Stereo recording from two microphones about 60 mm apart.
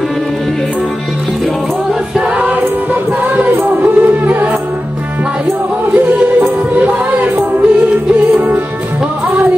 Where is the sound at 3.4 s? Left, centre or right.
Right.